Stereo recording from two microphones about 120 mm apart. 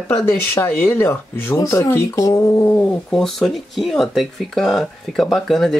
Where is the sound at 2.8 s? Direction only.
5° left (ahead or behind).